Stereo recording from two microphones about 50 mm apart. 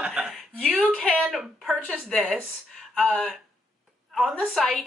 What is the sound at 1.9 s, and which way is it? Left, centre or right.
Speech, centre.